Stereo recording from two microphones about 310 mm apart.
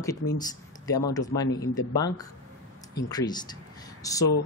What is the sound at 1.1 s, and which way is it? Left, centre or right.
A woman's voice, centre.